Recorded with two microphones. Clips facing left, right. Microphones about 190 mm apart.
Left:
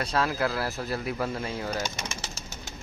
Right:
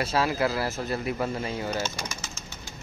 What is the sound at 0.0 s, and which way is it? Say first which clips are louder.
Speech: right 2 dB; 5° right (ahead or behind).